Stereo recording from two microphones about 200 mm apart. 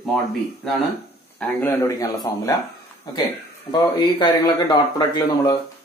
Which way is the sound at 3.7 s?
20° left (ahead or behind).